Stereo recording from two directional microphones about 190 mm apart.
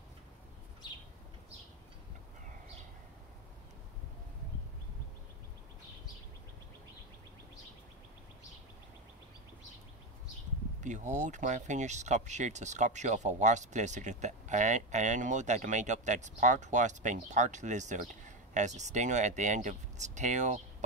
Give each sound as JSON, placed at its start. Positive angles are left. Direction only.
{"t": 10.8, "sound": "speech", "side_deg": -40}